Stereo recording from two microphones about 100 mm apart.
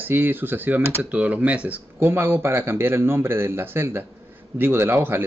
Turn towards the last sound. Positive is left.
turn(degrees=-20)  # may be behind; listen again after turning